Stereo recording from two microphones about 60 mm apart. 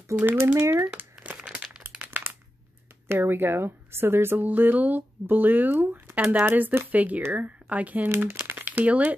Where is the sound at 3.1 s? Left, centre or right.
Right.